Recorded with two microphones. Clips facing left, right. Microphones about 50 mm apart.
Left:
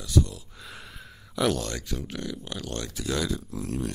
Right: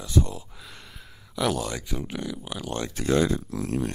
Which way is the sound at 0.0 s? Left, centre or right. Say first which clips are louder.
Even; right.